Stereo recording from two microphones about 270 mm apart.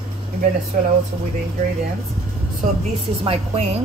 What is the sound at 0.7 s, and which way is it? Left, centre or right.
Speech, right.